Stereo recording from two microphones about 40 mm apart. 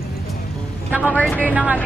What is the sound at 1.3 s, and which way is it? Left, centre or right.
Speech, right.